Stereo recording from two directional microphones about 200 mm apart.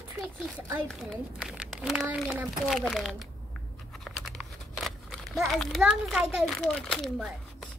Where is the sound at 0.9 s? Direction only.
Centre (ahead or behind).